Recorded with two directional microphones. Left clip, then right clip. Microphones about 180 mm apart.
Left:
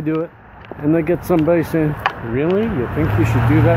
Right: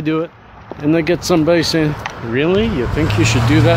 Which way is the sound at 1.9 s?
45° right (ahead or behind).